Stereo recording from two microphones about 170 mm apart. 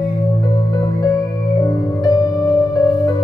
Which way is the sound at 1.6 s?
25° left (ahead or behind).